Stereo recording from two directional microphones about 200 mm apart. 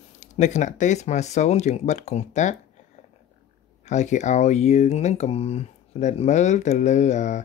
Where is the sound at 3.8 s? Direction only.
35° left (ahead or behind).